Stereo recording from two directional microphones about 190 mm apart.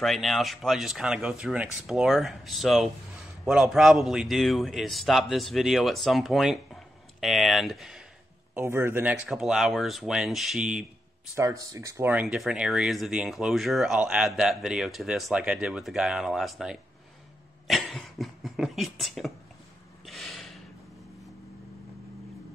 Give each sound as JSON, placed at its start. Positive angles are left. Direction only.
{"t": 0.0, "sound": "speech", "side_deg": 0}
{"t": 8.5, "sound": "speech", "side_deg": -10}
{"t": 11.3, "sound": "speech", "side_deg": -15}
{"t": 17.6, "sound": "a sound", "side_deg": 0}
{"t": 20.1, "sound": "snort", "side_deg": 0}